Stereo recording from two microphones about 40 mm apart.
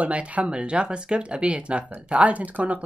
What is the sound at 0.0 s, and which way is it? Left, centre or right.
Speech, right.